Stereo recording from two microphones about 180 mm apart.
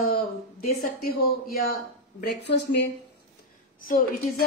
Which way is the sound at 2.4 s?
70° left (ahead or behind).